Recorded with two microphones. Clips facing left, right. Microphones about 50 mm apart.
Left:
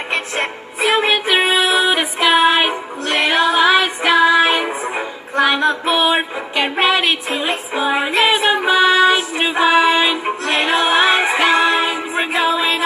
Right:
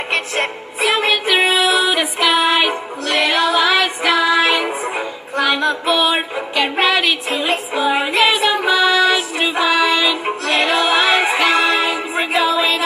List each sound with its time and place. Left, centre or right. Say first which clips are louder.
0.8 s music: left 1 dB; left